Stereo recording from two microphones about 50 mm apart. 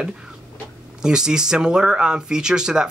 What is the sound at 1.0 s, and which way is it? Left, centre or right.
Speech, centre.